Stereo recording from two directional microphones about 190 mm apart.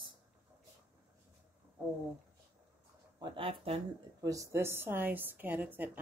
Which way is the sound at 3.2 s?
30° right (ahead or behind).